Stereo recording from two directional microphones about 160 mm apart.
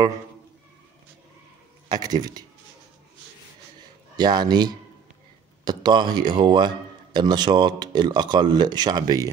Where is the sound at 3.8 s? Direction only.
25° right (ahead or behind).